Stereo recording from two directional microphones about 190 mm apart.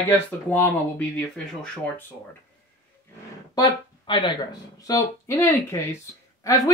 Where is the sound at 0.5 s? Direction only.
10° left (ahead or behind).